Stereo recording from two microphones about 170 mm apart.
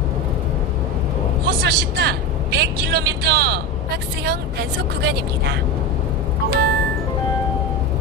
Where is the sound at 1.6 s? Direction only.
70° right (ahead or behind).